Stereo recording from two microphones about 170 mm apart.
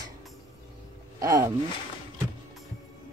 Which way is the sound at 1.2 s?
20° right (ahead or behind).